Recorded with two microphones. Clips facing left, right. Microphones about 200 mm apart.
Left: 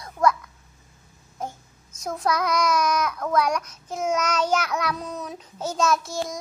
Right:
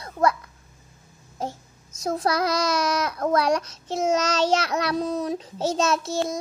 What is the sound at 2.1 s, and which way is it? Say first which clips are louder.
Child singing: right 2 dB; 30° right (ahead or behind).